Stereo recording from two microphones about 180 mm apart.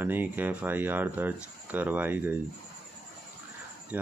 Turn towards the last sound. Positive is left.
turn(degrees=-10)  # may be behind; listen again after turning